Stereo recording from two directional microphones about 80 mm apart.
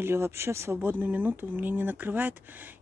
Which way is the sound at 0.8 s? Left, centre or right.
Right.